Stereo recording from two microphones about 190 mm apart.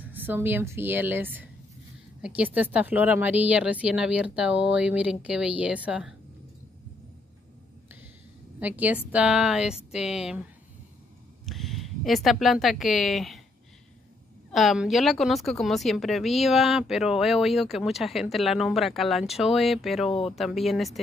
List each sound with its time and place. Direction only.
0.0 s a woman's voice: 10° right (ahead or behind)
8.5 s speech: 10° right (ahead or behind)
11.4 s speech: centre (ahead or behind)
14.5 s speech: centre (ahead or behind)
20.1 s speech: 30° left (ahead or behind)
20.3 s speech: centre (ahead or behind)